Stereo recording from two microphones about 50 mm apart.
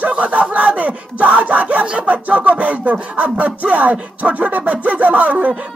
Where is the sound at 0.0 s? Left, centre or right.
Right.